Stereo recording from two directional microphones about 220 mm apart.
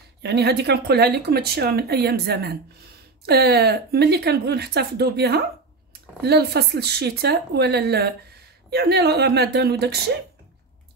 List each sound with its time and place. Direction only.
0.2 s speech: 50° right (ahead or behind)